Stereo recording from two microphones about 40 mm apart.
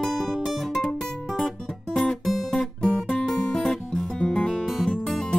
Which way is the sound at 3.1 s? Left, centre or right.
Left.